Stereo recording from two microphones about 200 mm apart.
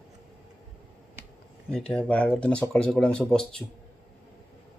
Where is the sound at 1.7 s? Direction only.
5° left (ahead or behind).